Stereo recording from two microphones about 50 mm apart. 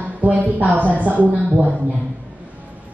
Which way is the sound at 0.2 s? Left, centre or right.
Right.